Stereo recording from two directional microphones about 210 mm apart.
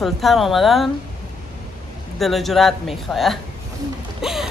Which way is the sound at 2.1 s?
Centre (ahead or behind).